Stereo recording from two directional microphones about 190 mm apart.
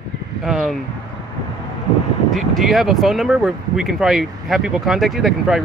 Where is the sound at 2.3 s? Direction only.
Centre (ahead or behind).